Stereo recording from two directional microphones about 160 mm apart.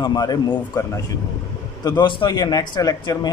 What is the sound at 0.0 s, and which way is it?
A man's voice, 25° left (ahead or behind).